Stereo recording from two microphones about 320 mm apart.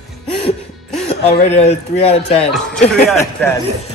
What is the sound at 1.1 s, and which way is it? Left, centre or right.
A man's voice, left.